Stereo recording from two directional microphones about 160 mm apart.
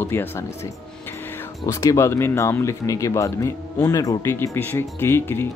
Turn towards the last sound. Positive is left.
turn(degrees=15)  # may be behind; listen again after turning